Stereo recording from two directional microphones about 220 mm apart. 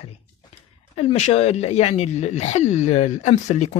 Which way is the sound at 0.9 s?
25° left (ahead or behind).